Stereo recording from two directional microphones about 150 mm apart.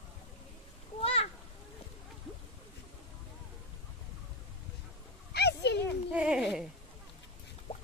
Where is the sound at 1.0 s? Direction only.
40° left (ahead or behind).